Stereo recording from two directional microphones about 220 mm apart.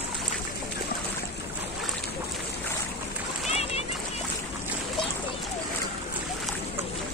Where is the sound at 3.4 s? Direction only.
30° left (ahead or behind).